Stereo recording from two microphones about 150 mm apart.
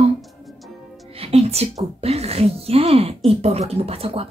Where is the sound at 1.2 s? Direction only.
40° right (ahead or behind).